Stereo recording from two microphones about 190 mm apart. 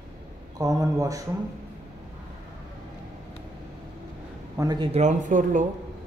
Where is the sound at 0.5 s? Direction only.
20° right (ahead or behind).